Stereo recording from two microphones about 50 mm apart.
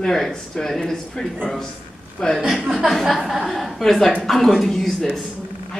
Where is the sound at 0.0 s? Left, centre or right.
Centre.